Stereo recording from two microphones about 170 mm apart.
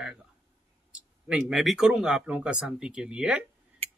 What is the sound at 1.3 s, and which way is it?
Speech, 5° right (ahead or behind).